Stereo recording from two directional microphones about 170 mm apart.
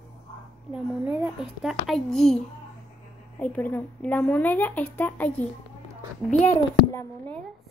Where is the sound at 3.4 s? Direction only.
10° left (ahead or behind).